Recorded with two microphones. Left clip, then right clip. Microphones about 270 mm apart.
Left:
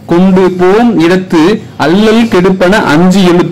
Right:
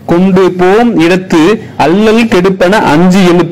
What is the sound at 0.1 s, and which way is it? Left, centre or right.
A man's voice, centre.